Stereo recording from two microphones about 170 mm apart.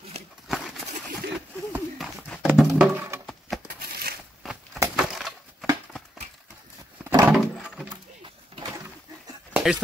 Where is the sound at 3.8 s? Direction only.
65° right (ahead or behind).